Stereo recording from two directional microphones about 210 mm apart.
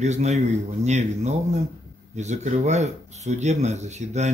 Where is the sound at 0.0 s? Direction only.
35° right (ahead or behind).